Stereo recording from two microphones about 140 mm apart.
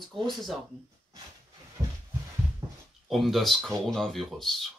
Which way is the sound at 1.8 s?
20° right (ahead or behind).